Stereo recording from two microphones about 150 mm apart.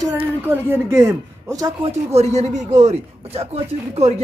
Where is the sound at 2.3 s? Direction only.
50° right (ahead or behind).